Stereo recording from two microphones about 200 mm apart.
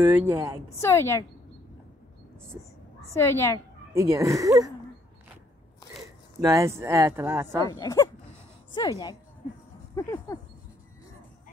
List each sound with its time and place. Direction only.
0.3 s speech: 10° right (ahead or behind)
0.7 s speech: 10° left (ahead or behind)
3.0 s a woman's voice: 15° left (ahead or behind)
3.9 s speech: 15° right (ahead or behind)
6.4 s speech: 15° right (ahead or behind)
7.7 s a woman's voice: 15° left (ahead or behind)